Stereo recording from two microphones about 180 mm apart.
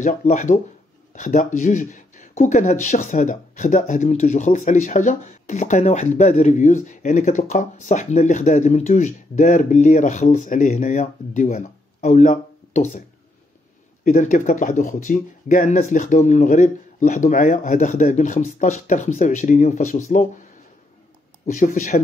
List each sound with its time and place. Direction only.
0.0 s speech: 45° left (ahead or behind)
14.0 s speech: 45° left (ahead or behind)
21.5 s speech: 45° left (ahead or behind)